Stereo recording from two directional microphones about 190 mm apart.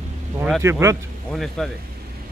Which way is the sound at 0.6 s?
15° right (ahead or behind).